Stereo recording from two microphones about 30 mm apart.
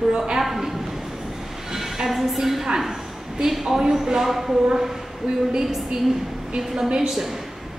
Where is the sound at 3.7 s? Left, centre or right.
Right.